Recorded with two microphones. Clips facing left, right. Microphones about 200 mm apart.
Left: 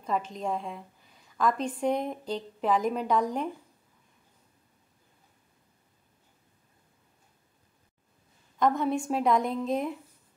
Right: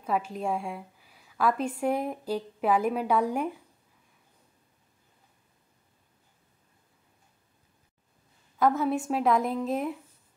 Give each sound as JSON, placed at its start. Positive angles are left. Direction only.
{"t": 0.0, "sound": "a woman's voice", "side_deg": -10}
{"t": 8.5, "sound": "a woman's voice", "side_deg": -5}